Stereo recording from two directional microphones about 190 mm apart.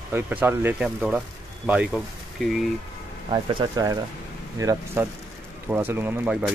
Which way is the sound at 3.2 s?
30° right (ahead or behind).